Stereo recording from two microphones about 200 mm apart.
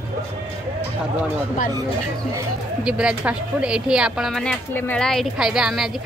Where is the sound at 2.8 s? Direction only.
5° right (ahead or behind).